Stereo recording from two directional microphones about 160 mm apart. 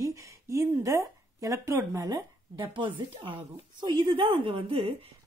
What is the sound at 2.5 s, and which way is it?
A woman's voice, 30° right (ahead or behind).